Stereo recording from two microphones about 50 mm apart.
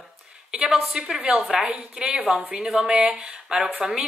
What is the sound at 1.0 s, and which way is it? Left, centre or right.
A woman's voice, centre.